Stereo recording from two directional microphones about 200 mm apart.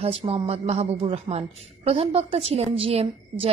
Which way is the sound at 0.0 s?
30° right (ahead or behind).